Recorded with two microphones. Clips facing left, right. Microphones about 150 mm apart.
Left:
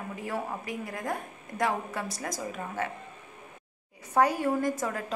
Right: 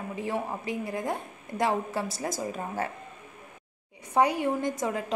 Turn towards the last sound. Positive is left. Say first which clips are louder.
# right 1 dB
turn(degrees=-20)  # may be behind; listen again after turning